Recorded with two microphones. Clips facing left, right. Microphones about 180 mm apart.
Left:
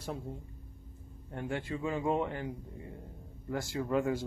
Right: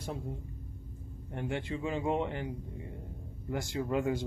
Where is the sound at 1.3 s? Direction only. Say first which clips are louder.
Right 1 dB; 20° right (ahead or behind).